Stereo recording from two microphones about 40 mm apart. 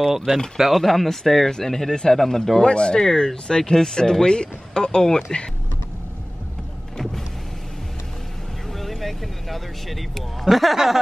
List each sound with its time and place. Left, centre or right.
0.6 s speech: centre
2.6 s speech: centre
8.7 s speech: centre